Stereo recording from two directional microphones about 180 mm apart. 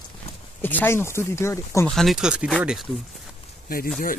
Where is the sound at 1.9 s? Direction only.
Centre (ahead or behind).